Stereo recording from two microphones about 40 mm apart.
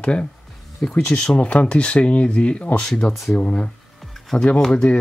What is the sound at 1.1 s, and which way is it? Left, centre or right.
Speech, left.